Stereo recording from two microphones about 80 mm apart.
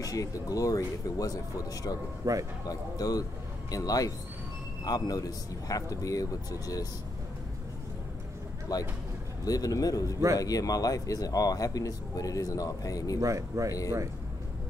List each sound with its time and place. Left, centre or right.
0.0 s speech: left
2.2 s speech: right
2.6 s speech: left
8.7 s speech: left
13.2 s speech: right